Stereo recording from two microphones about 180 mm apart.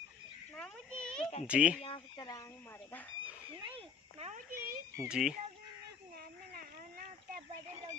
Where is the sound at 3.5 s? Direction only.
30° right (ahead or behind).